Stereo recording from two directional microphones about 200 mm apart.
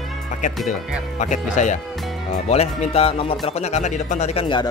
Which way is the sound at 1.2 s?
35° left (ahead or behind).